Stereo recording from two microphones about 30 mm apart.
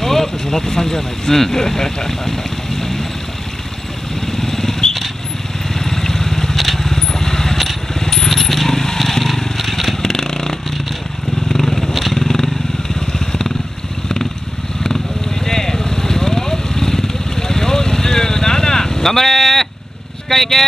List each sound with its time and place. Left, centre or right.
0.0 s speech: centre
4.3 s motorcycle: centre
5.8 s vehicle: centre
6.5 s vehicle: centre
8.3 s vehicle: centre
8.6 s vehicle: centre
10.0 s vehicle: centre
12.0 s motorcycle: centre
13.0 s vehicle: centre
15.4 s vehicle: centre
20.2 s speech: centre